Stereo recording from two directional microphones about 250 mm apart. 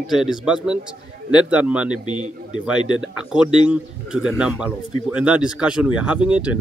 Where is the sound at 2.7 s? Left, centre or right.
Centre.